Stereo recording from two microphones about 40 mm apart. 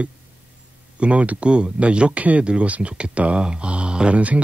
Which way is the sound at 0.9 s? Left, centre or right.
Right.